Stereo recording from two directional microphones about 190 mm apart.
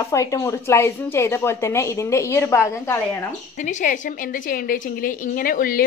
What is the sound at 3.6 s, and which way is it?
A woman's voice, 40° left (ahead or behind).